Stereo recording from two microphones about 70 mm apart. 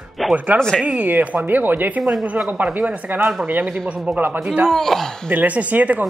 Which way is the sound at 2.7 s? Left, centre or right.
Right.